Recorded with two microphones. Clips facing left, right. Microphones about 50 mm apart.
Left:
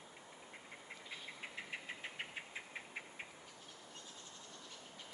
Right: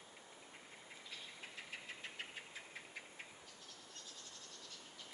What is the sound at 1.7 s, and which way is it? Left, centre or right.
Engine knocking, left.